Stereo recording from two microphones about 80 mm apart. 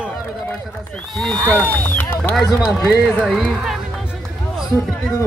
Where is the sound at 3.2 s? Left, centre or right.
Centre.